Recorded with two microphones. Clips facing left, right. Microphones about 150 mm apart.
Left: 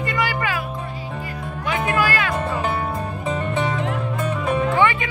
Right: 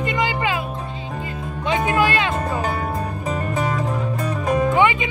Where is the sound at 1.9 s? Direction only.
25° right (ahead or behind).